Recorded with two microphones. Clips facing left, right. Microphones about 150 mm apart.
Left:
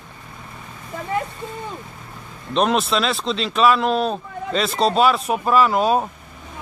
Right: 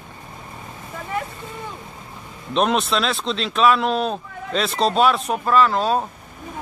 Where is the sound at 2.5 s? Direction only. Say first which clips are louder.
Left 1 dB; centre (ahead or behind).